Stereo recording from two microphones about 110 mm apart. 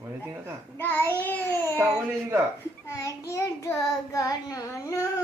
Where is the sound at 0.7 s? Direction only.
20° left (ahead or behind).